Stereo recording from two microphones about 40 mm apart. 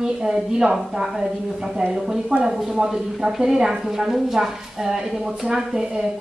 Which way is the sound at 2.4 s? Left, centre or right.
Centre.